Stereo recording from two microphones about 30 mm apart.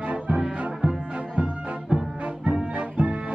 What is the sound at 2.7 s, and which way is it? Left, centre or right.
Music, right.